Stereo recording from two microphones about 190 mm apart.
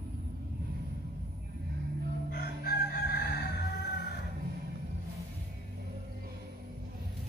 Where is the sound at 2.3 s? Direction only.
55° left (ahead or behind).